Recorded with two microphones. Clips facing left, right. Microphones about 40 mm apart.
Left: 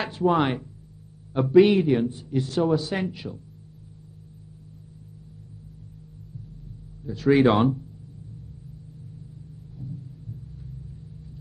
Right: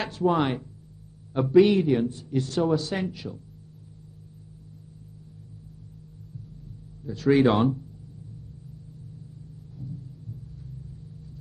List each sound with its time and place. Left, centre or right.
0.1 s speech: centre
1.3 s a man's voice: centre
1.6 s a man's voice: left
7.1 s a man's voice: centre